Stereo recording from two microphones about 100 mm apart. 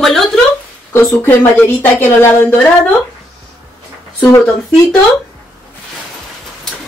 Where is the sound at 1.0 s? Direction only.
15° left (ahead or behind).